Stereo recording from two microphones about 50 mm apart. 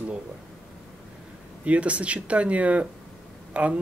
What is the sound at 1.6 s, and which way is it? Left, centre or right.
Speech, right.